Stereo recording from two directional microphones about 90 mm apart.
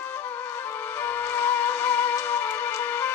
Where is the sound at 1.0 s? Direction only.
25° left (ahead or behind).